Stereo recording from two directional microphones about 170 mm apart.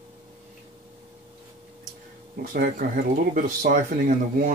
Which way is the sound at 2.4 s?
55° right (ahead or behind).